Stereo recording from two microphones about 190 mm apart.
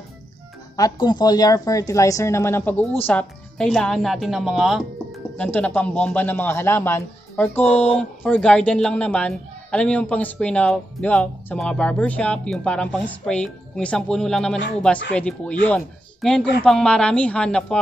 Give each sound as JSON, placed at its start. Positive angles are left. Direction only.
{"t": 0.7, "sound": "a woman's voice", "side_deg": 20}